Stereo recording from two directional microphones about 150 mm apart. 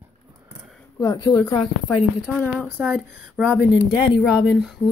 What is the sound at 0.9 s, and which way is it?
A woman's voice, 25° left (ahead or behind).